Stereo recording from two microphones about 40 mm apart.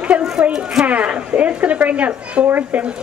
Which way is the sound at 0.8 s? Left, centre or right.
Right.